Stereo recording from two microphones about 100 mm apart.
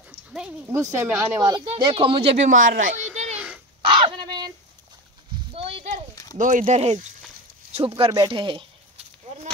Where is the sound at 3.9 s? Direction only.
55° right (ahead or behind).